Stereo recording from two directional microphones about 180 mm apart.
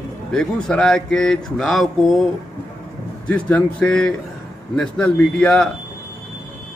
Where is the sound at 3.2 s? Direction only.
5° left (ahead or behind).